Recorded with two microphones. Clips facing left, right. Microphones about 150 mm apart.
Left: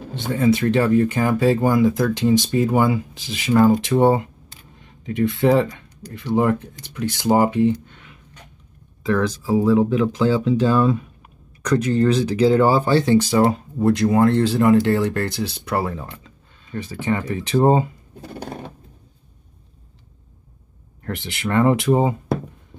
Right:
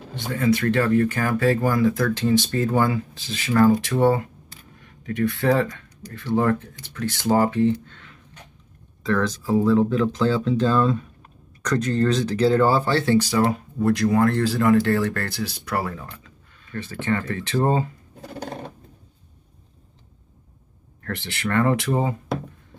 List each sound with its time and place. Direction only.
0.1 s speech: 25° left (ahead or behind)
21.0 s speech: 20° left (ahead or behind)